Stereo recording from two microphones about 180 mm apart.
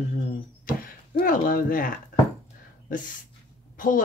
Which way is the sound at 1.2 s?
50° left (ahead or behind).